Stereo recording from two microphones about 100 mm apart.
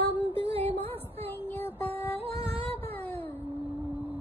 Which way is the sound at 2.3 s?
70° right (ahead or behind).